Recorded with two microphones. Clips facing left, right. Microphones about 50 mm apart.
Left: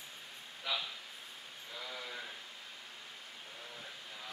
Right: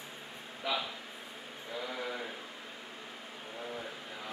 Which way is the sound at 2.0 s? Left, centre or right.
Right.